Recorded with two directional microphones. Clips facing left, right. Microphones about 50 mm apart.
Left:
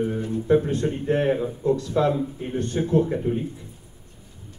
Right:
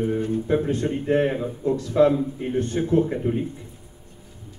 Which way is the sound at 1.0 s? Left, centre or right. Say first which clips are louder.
Right 1 dB; centre.